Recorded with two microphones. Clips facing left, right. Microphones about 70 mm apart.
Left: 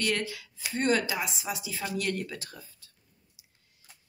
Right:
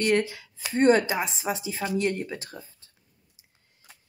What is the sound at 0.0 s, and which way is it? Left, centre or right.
A woman's voice, right.